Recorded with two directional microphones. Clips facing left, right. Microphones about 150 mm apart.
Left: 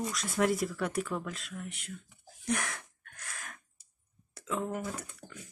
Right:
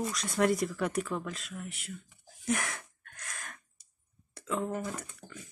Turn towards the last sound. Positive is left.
turn(degrees=10)  # may be behind; listen again after turning